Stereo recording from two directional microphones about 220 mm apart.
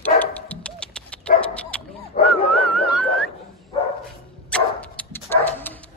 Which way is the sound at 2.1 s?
35° left (ahead or behind).